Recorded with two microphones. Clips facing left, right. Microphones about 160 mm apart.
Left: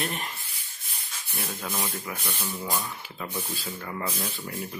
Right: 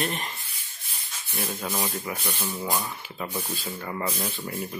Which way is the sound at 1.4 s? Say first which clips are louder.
Right 3 dB; 10° right (ahead or behind).